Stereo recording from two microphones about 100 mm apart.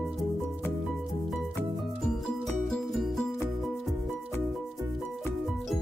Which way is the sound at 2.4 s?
5° left (ahead or behind).